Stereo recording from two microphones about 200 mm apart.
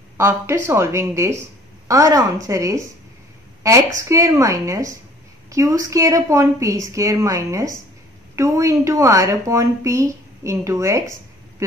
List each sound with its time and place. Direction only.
0.2 s speech: 10° right (ahead or behind)